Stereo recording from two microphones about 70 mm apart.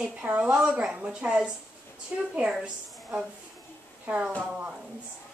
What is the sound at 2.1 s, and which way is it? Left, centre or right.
Speech, right.